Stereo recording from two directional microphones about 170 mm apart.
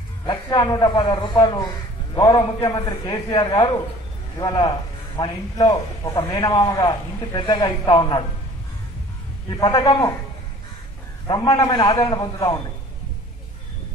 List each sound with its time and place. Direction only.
0.3 s a man's voice: 25° left (ahead or behind)
9.5 s a man's voice: 25° left (ahead or behind)
11.2 s a man's voice: 25° left (ahead or behind)